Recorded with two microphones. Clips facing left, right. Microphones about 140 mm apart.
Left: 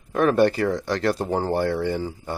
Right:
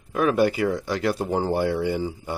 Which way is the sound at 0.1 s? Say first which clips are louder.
Left 2 dB; 5° right (ahead or behind).